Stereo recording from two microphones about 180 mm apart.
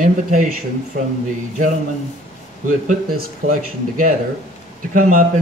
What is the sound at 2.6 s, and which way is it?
Speech, 50° right (ahead or behind).